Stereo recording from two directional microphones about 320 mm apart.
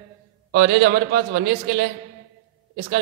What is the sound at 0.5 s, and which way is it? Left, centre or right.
A man's voice, right.